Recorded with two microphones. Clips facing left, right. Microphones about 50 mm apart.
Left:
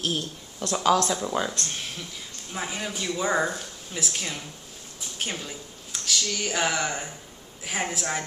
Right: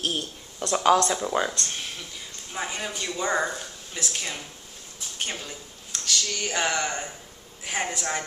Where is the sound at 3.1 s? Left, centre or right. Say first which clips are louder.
Left 1 dB; centre.